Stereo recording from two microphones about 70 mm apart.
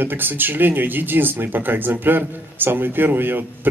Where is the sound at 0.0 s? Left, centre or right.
Right.